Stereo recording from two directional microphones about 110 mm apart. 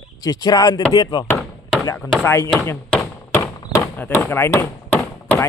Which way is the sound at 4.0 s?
20° left (ahead or behind).